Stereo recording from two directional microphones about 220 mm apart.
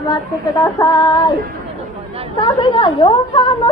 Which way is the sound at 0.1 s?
15° left (ahead or behind).